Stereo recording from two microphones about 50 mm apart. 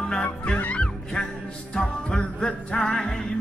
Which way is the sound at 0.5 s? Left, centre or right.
Left.